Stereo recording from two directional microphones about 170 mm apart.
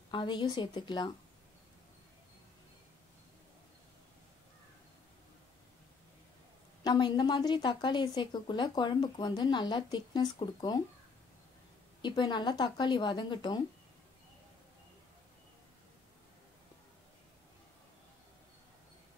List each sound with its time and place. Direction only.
0.1 s a woman's voice: 30° left (ahead or behind)
6.8 s a woman's voice: 25° left (ahead or behind)
12.0 s a woman's voice: 25° left (ahead or behind)